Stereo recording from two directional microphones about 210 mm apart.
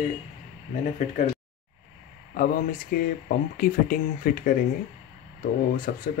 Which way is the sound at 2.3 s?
40° left (ahead or behind).